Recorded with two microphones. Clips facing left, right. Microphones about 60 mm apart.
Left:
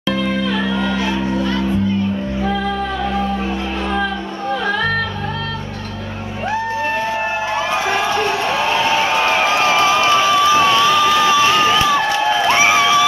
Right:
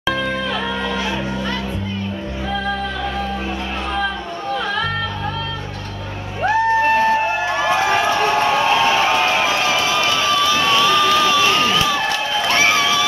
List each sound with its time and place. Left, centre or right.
9.8 s crowd: left
10.9 s crowd: centre
12.4 s crowd: centre